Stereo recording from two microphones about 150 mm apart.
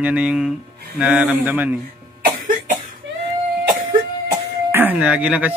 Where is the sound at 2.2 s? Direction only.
65° right (ahead or behind).